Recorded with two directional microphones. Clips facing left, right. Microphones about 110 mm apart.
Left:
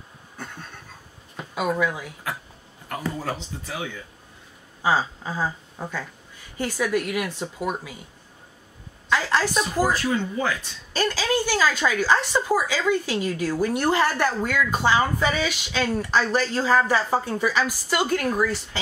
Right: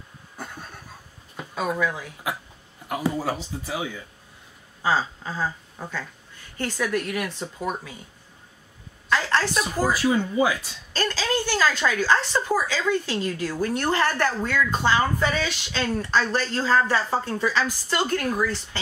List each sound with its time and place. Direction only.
0.4 s a sound: 10° right (ahead or behind)
1.8 s a woman's voice: 10° left (ahead or behind)
2.3 s a sound: 15° right (ahead or behind)
2.9 s speech: 10° right (ahead or behind)
4.8 s a sound: 15° left (ahead or behind)
6.5 s a woman's voice: 10° left (ahead or behind)
9.1 s a woman's voice: 10° left (ahead or behind)
9.8 s speech: 10° right (ahead or behind)
10.9 s a woman's voice: 10° left (ahead or behind)